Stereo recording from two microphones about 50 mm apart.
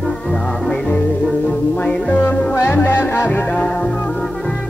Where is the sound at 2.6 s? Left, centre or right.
Left.